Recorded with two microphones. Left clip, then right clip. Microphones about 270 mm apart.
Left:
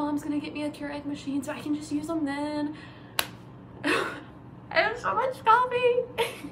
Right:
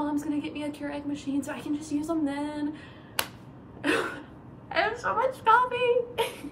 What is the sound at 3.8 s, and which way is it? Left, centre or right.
Hiccup, centre.